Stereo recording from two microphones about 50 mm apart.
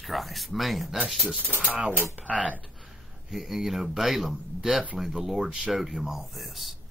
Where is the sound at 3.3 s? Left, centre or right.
Centre.